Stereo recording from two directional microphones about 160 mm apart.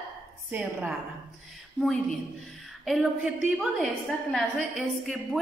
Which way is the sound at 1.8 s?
5° left (ahead or behind).